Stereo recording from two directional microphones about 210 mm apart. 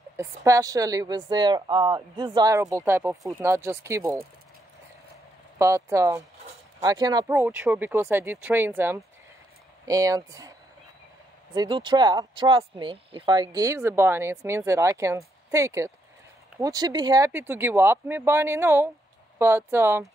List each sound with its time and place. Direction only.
0.2 s speech: 15° right (ahead or behind)
5.6 s speech: 15° right (ahead or behind)
11.5 s speech: 20° right (ahead or behind)